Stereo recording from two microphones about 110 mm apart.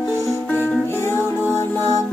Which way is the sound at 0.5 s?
15° left (ahead or behind).